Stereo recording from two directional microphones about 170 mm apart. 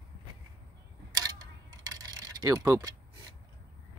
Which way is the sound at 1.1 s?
25° right (ahead or behind).